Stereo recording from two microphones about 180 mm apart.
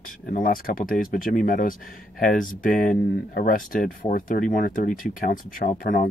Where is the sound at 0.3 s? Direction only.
50° left (ahead or behind).